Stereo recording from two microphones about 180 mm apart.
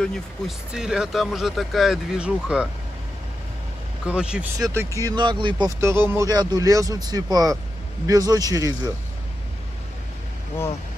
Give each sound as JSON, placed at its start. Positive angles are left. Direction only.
{"t": 0.0, "sound": "speech", "side_deg": 0}
{"t": 4.0, "sound": "speech", "side_deg": -5}
{"t": 4.6, "sound": "speech", "side_deg": -20}
{"t": 5.8, "sound": "speech", "side_deg": -15}